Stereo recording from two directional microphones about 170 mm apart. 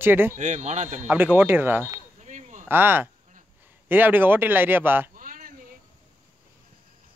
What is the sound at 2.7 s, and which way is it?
Speech, 10° right (ahead or behind).